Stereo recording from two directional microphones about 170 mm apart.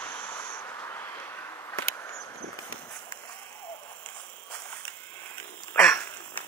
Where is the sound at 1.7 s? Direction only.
10° left (ahead or behind).